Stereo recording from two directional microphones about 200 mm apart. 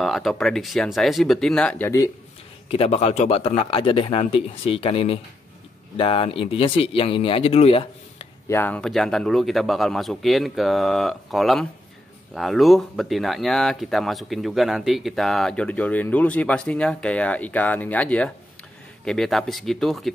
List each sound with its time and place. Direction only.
0.0 s speech: centre (ahead or behind)
2.7 s a man's voice: 30° left (ahead or behind)
8.5 s speech: 10° left (ahead or behind)